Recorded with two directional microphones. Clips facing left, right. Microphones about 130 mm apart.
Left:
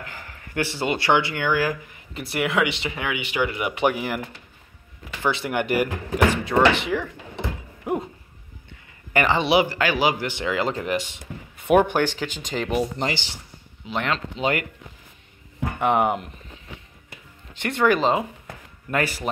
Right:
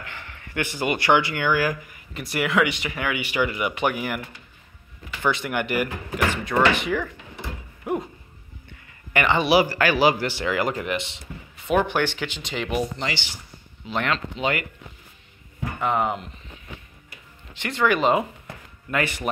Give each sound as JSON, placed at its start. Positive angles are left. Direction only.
{"t": 0.0, "sound": "speech", "side_deg": 40}
{"t": 5.2, "sound": "speech", "side_deg": 30}
{"t": 9.1, "sound": "speech", "side_deg": 40}
{"t": 9.4, "sound": "speech", "side_deg": 20}
{"t": 10.9, "sound": "speech", "side_deg": 45}
{"t": 11.9, "sound": "speech", "side_deg": 40}
{"t": 13.8, "sound": "speech", "side_deg": 15}
{"t": 14.1, "sound": "speech", "side_deg": 35}
{"t": 15.8, "sound": "speech", "side_deg": 60}
{"t": 17.6, "sound": "speech", "side_deg": 50}
{"t": 17.9, "sound": "speech", "side_deg": 30}